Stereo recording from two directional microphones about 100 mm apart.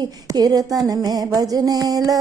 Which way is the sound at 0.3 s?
40° right (ahead or behind).